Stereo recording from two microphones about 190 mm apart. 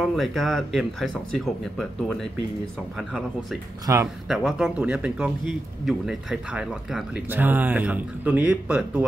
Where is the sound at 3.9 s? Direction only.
15° right (ahead or behind).